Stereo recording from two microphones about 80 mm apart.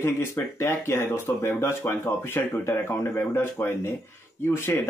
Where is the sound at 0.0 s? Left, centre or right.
Left.